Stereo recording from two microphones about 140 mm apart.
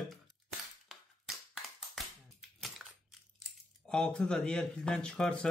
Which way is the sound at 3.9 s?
5° left (ahead or behind).